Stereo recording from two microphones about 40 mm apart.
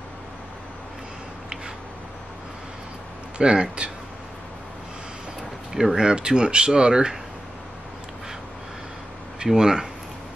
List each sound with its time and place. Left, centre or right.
3.3 s speech: right
5.7 s speech: centre
9.4 s speech: centre